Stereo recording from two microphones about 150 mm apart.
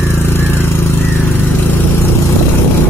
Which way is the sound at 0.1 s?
15° left (ahead or behind).